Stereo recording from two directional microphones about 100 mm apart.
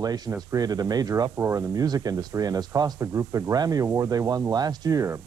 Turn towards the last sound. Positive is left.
turn(degrees=-35)  # may be behind; listen again after turning